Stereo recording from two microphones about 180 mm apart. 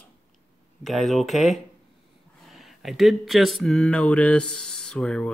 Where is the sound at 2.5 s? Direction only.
Centre (ahead or behind).